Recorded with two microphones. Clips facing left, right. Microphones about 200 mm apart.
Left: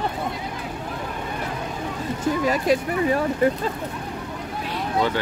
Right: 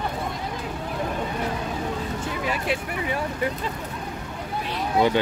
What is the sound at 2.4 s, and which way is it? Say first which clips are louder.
Speech: left 6 dB; 40° left (ahead or behind).